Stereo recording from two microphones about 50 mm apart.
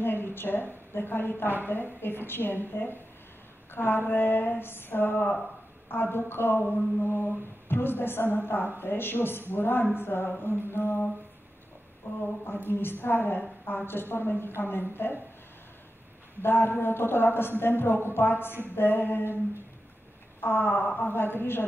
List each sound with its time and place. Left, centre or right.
0.0 s a woman's voice: left
12.1 s a woman's voice: left
16.4 s a woman's voice: left
20.3 s a woman's voice: left